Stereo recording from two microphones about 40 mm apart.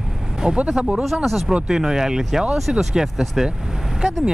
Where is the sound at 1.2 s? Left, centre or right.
Centre.